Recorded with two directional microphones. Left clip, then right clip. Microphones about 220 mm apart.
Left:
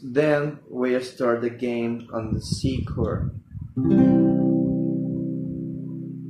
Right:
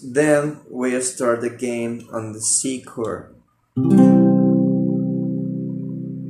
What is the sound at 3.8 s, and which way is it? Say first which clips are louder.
Guitar: right 4 dB; 25° right (ahead or behind).